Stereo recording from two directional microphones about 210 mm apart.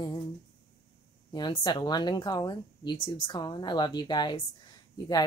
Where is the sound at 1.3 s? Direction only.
20° left (ahead or behind).